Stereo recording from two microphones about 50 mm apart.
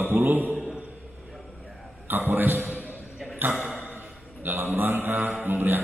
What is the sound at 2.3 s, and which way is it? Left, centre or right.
A man's voice, right.